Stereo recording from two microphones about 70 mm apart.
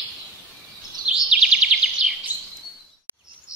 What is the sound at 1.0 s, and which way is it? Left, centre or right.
Bird vocalization, centre.